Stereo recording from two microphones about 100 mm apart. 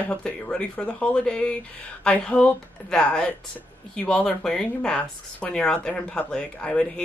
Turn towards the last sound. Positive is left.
turn(degrees=10)  # may be behind; listen again after turning